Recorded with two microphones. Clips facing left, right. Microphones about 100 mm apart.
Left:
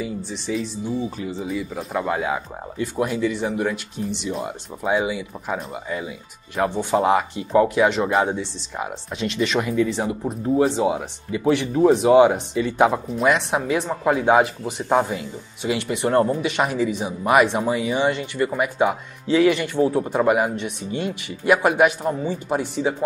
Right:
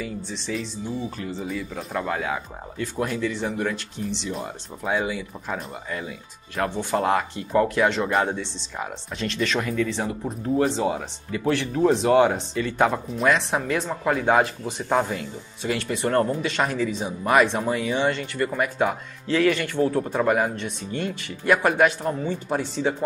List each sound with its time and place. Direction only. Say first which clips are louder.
0.0 s speech: left 3 dB; 10° left (ahead or behind)